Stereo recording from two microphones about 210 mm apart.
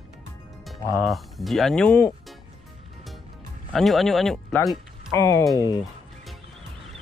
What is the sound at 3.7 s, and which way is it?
Speech, centre (ahead or behind).